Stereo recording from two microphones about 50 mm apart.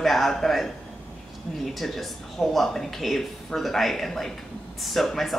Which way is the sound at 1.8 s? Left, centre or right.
Centre.